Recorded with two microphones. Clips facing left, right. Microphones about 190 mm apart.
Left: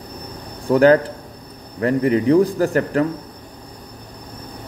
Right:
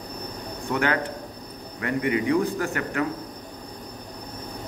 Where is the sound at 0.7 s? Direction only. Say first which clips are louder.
Left 12 dB; 35° left (ahead or behind).